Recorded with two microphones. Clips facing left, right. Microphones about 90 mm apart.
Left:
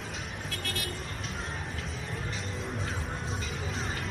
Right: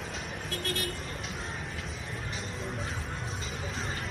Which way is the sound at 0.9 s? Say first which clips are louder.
Even; centre (ahead or behind).